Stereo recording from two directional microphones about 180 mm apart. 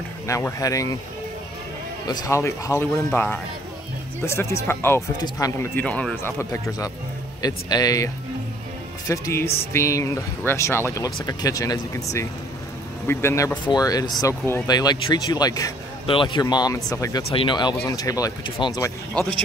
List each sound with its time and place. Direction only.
0.3 s speech: 15° left (ahead or behind)
2.0 s speech: 20° left (ahead or behind)
17.3 s speech: 30° left (ahead or behind)